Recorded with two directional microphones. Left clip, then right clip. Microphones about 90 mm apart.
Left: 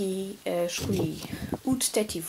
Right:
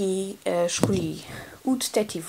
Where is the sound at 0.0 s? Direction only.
35° right (ahead or behind).